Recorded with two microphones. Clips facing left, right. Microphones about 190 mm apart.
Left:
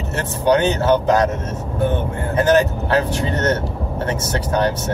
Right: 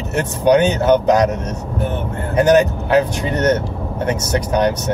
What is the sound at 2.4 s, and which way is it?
Speech, 15° right (ahead or behind).